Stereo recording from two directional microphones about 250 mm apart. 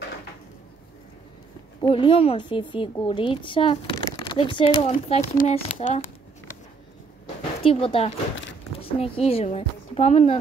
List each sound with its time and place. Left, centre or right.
1.9 s a woman's voice: left
7.6 s a woman's voice: left